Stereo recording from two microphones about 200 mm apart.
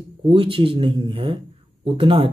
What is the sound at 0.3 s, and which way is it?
Speech, 25° right (ahead or behind).